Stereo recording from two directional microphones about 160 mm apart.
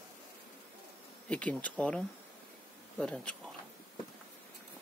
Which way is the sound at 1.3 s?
10° left (ahead or behind).